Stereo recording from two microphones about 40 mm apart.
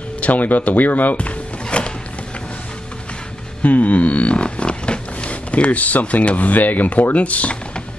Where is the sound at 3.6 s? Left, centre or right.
Left.